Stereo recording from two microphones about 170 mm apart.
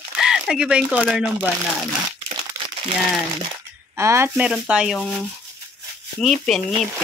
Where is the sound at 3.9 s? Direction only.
15° right (ahead or behind).